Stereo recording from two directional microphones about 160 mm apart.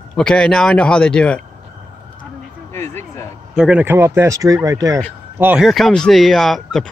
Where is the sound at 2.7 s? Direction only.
15° left (ahead or behind).